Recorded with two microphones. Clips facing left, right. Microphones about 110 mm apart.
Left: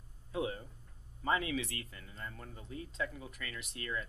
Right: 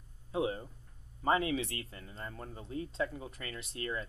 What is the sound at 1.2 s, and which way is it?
Speech, 35° right (ahead or behind).